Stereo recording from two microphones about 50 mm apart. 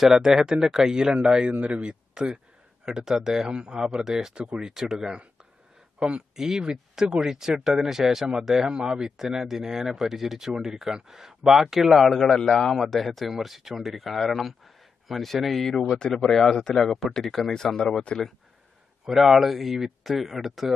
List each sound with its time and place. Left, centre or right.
0.0 s speech: centre
6.3 s speech: centre
19.0 s speech: centre